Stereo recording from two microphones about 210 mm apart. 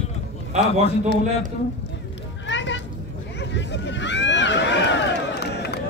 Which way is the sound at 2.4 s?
60° left (ahead or behind).